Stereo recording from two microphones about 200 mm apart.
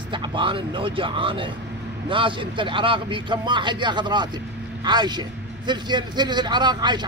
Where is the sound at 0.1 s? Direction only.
25° right (ahead or behind).